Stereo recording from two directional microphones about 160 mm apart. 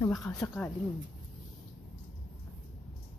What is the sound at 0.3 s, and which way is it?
Speech, 15° left (ahead or behind).